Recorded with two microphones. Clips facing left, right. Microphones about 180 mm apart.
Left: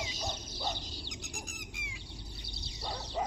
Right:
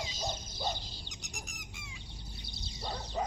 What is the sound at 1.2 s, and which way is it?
Chicken, 55° left (ahead or behind).